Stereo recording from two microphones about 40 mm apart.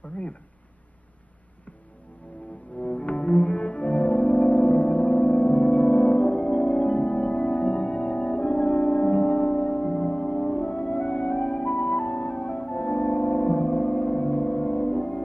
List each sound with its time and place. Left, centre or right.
2.8 s cello: left